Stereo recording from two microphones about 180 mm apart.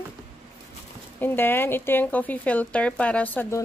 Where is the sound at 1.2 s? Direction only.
10° left (ahead or behind).